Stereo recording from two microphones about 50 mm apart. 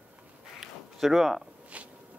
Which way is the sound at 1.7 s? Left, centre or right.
Right.